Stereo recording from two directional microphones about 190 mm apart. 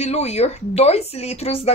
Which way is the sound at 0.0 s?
35° left (ahead or behind).